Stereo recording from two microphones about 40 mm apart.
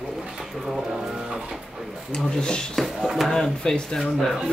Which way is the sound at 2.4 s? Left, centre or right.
Centre.